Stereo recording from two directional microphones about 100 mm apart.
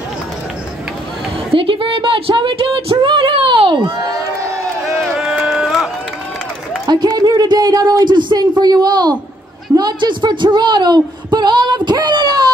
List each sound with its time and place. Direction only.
1.5 s speech: 65° right (ahead or behind)
5.1 s a sound: 5° right (ahead or behind)
6.9 s speech: 45° right (ahead or behind)